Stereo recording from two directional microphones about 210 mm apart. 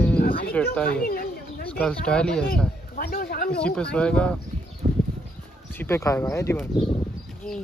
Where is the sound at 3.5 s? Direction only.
5° left (ahead or behind).